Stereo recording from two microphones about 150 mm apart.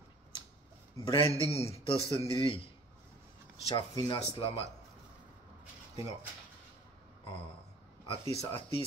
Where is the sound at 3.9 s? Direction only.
25° left (ahead or behind).